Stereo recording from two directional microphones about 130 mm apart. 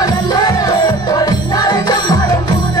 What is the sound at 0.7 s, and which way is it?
Music, 30° left (ahead or behind).